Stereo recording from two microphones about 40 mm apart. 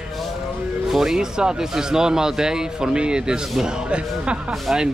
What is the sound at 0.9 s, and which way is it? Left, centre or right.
Speech, centre.